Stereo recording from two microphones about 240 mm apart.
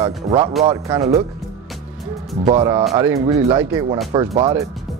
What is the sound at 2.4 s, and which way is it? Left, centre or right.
Speech, centre.